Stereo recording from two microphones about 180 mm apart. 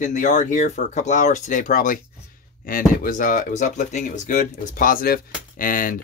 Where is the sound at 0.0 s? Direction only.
40° left (ahead or behind).